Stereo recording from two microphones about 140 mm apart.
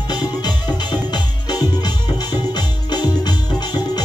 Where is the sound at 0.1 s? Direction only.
30° left (ahead or behind).